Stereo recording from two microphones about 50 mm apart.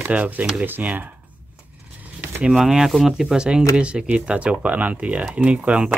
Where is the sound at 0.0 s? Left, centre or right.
Right.